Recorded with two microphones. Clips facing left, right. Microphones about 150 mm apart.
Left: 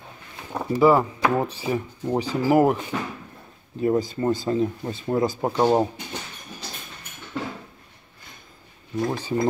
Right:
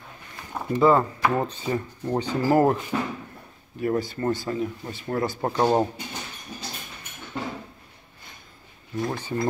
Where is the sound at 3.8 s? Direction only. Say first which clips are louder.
Left 3 dB; 20° left (ahead or behind).